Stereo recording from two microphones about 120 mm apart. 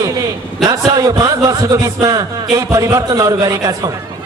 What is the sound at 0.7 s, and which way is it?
A man's voice, 30° right (ahead or behind).